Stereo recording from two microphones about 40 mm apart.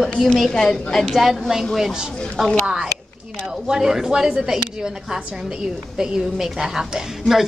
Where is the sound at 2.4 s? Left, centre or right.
Centre.